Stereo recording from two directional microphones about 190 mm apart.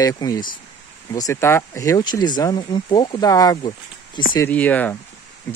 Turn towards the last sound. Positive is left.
turn(degrees=10)  # may be behind; listen again after turning